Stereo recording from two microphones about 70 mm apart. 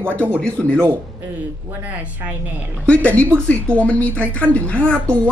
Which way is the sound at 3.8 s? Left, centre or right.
Left.